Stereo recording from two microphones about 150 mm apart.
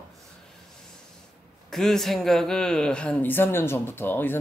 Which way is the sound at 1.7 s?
Centre (ahead or behind).